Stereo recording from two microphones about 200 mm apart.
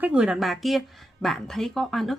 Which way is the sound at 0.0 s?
5° right (ahead or behind).